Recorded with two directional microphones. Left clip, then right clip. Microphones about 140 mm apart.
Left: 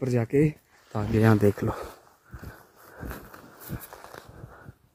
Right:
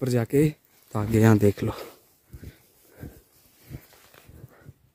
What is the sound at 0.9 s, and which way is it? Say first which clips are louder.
Speech: right 2 dB; 50° right (ahead or behind).